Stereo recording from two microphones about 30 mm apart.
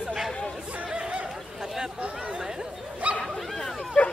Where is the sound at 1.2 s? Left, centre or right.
Centre.